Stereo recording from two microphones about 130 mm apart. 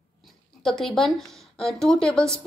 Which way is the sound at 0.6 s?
5° left (ahead or behind).